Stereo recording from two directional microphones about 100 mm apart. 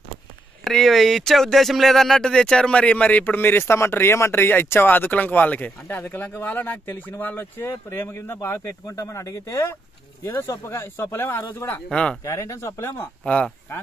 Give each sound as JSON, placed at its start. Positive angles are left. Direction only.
{"t": 0.7, "sound": "speech", "side_deg": 0}
{"t": 11.9, "sound": "speech", "side_deg": 10}
{"t": 12.2, "sound": "speech", "side_deg": 30}
{"t": 13.2, "sound": "speech", "side_deg": 15}